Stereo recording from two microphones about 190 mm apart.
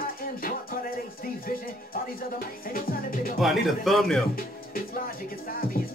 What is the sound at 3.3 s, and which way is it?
Speech, centre (ahead or behind).